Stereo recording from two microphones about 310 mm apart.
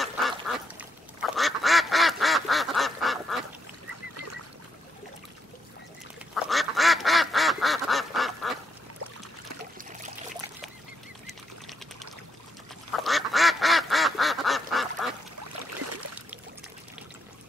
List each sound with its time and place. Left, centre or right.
0.7 s duck: centre
4.1 s goose: right
6.3 s duck: centre
11.2 s duck: centre
15.8 s a sound: right